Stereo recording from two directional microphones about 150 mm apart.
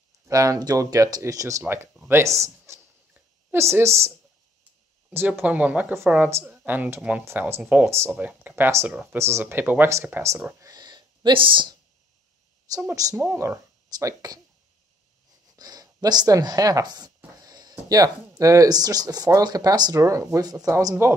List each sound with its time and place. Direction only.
0.3 s speech: 20° right (ahead or behind)
5.1 s speech: 15° right (ahead or behind); by 11.7 s 35° right (ahead or behind)
12.7 s speech: 25° right (ahead or behind)
15.5 s speech: 25° right (ahead or behind)